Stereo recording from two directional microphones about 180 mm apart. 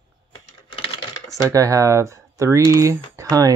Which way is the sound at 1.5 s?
20° right (ahead or behind).